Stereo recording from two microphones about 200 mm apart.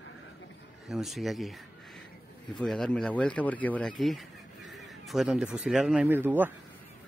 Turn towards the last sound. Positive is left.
turn(degrees=-10)  # may be behind; listen again after turning